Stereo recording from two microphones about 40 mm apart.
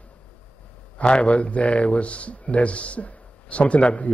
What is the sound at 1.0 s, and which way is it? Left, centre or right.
A woman's voice, left.